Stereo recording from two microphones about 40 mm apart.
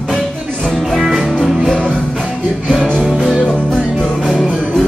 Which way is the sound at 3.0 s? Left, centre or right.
Centre.